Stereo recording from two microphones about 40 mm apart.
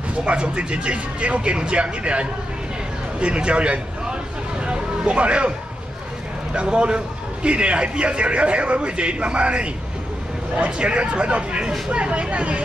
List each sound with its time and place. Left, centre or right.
0.1 s a man's voice: right
3.2 s a sound: right
6.5 s a man's voice: right
10.8 s a man's voice: right